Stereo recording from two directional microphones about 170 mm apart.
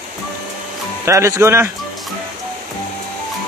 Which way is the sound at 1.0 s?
15° right (ahead or behind).